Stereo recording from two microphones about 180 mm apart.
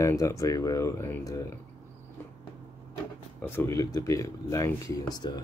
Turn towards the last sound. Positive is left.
turn(degrees=25)  # may be behind; listen again after turning